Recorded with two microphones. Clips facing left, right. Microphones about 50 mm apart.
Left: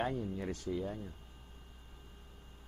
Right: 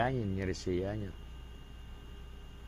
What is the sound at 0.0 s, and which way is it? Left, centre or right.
Speech, right.